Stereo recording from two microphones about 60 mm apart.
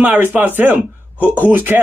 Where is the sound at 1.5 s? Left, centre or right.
Right.